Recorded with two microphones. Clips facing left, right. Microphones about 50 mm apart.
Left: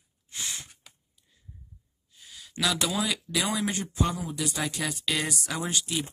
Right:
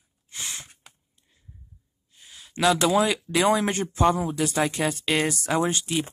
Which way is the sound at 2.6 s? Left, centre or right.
Right.